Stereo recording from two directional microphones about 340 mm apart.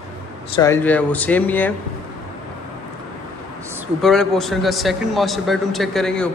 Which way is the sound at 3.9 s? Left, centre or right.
Centre.